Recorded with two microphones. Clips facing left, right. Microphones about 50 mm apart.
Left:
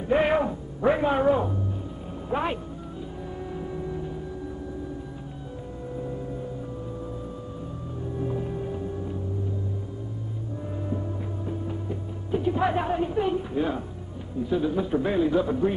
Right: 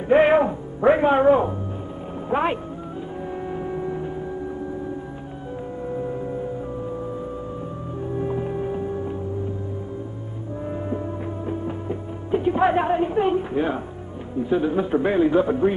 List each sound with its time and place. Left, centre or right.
0.1 s speech: right
3.4 s a sound: right
6.0 s music: right
8.2 s music: right
11.4 s music: right
14.4 s speech: right